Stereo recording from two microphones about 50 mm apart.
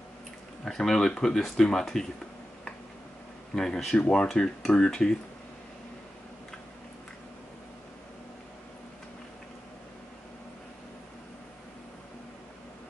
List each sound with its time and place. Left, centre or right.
0.7 s speech: centre
3.5 s speech: centre